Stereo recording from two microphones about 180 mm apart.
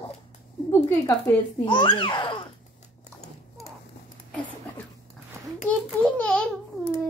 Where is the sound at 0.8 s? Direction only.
15° left (ahead or behind).